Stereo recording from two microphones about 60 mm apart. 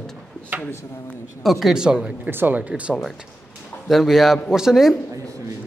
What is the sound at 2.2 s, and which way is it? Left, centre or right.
Speech, right.